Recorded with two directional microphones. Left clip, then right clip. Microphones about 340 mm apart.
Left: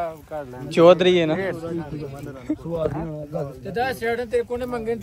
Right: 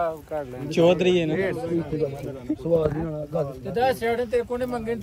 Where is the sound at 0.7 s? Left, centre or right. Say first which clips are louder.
Left 5 dB; centre.